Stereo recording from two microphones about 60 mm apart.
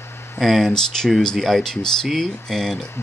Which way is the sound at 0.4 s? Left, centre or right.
Centre.